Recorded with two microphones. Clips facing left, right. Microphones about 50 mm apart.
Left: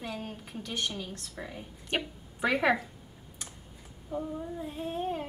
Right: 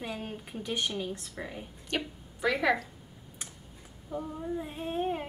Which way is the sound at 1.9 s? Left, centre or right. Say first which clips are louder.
Left 1 dB; centre.